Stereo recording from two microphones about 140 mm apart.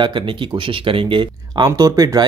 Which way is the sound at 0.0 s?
35° right (ahead or behind).